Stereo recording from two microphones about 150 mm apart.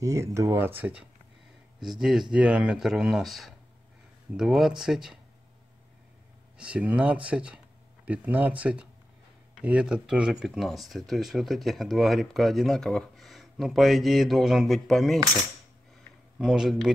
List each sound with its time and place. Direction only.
0.0 s speech: 20° right (ahead or behind); by 5.2 s 5° right (ahead or behind)
6.6 s speech: 10° right (ahead or behind)